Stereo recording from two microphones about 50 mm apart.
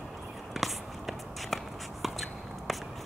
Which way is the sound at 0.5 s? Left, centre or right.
Centre.